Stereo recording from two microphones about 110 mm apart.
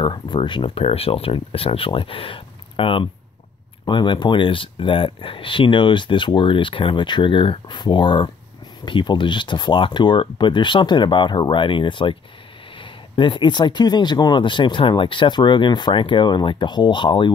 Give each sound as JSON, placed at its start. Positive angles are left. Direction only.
{"t": 0.0, "sound": "speech", "side_deg": 45}